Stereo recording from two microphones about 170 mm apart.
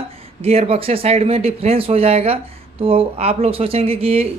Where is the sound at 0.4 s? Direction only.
35° right (ahead or behind).